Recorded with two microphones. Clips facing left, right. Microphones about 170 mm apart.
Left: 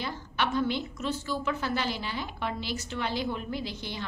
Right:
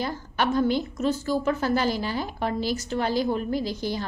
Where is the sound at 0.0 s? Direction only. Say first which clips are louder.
Right 5 dB; 40° right (ahead or behind).